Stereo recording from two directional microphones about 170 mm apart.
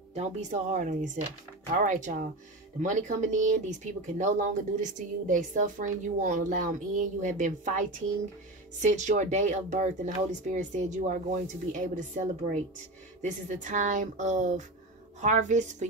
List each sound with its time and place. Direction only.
0.1 s speech: 40° right (ahead or behind)
8.8 s speech: 45° right (ahead or behind)
13.2 s speech: 45° right (ahead or behind)